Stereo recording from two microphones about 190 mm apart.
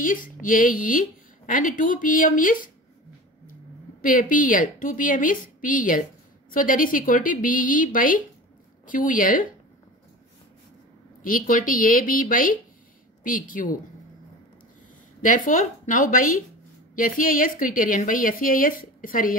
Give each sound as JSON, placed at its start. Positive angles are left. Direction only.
{"t": 0.0, "sound": "a woman's voice", "side_deg": 45}
{"t": 4.0, "sound": "a woman's voice", "side_deg": 45}
{"t": 11.2, "sound": "a woman's voice", "side_deg": 45}
{"t": 15.2, "sound": "a woman's voice", "side_deg": 45}